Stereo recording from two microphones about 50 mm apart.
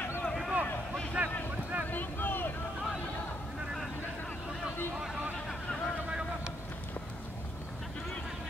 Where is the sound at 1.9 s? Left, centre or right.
Left.